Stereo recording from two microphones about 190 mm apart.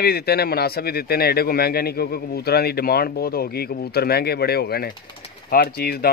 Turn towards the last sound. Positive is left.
turn(degrees=55)  # may be behind; listen again after turning